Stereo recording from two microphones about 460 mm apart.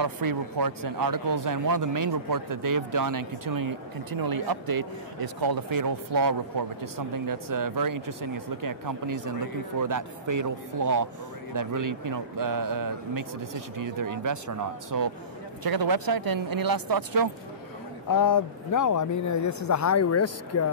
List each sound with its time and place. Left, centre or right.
0.0 s speech: right
18.0 s speech: left